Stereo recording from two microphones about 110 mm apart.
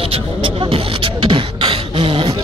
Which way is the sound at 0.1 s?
55° right (ahead or behind).